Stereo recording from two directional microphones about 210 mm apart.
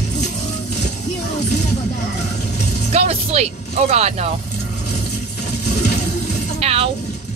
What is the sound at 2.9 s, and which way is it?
Speech, 30° right (ahead or behind).